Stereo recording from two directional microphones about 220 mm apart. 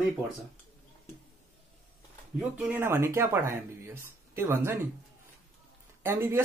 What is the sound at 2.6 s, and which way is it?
Speech, 10° right (ahead or behind).